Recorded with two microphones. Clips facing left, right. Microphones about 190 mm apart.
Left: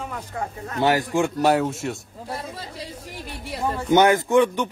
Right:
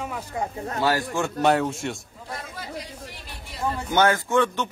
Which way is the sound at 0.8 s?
20° left (ahead or behind).